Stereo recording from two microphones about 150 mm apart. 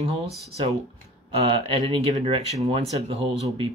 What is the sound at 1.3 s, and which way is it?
Speech, 40° right (ahead or behind).